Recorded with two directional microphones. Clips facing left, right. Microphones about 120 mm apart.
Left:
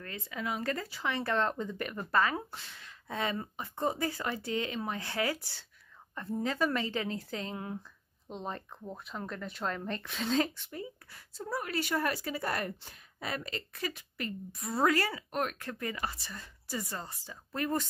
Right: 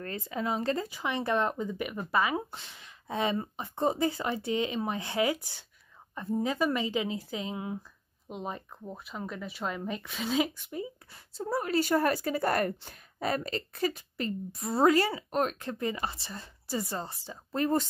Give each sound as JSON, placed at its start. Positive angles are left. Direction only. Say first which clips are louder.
{"t": 0.0, "sound": "a woman's voice", "louder": "right 5 dB", "side_deg": -35}
{"t": 11.3, "sound": "a woman's voice", "louder": "right 6 dB", "side_deg": -30}